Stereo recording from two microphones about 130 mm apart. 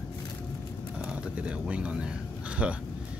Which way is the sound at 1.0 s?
10° right (ahead or behind).